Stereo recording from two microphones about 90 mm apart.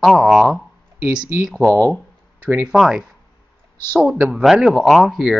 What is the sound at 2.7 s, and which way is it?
Speech, 5° right (ahead or behind).